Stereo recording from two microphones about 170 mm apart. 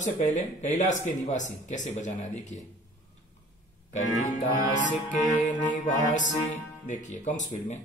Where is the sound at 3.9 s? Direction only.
40° left (ahead or behind).